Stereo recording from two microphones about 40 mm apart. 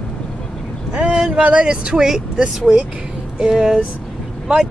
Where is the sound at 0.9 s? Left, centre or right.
Right.